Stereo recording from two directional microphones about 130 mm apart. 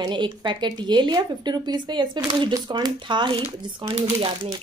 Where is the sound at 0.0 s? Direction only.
35° right (ahead or behind).